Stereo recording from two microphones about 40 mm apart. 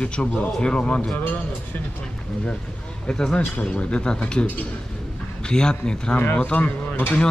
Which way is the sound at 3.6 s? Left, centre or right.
Left.